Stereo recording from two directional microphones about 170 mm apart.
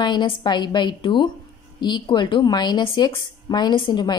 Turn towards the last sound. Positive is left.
turn(degrees=25)  # may be behind; listen again after turning